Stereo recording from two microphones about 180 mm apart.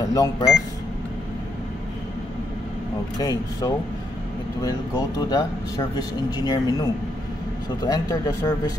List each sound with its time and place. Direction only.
0.0 s speech: 20° left (ahead or behind)
3.2 s speech: 20° left (ahead or behind)